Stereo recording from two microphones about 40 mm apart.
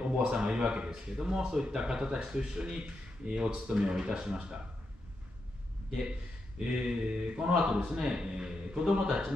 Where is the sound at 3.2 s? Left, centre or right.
Right.